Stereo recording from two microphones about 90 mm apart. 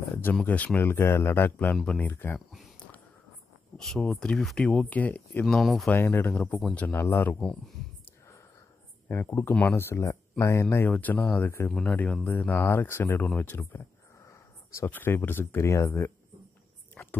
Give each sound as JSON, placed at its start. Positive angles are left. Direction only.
{"t": 0.1, "sound": "a sound", "side_deg": 20}
{"t": 0.4, "sound": "speech", "side_deg": 15}
{"t": 3.7, "sound": "speech", "side_deg": 5}
{"t": 5.6, "sound": "speech", "side_deg": 0}
{"t": 5.9, "sound": "speech", "side_deg": 25}
{"t": 7.3, "sound": "speech", "side_deg": 10}
{"t": 9.1, "sound": "speech", "side_deg": 25}
{"t": 11.7, "sound": "speech", "side_deg": 15}
{"t": 13.7, "sound": "a sound", "side_deg": 35}
{"t": 14.9, "sound": "speech", "side_deg": 20}
{"t": 16.9, "sound": "a sound", "side_deg": 20}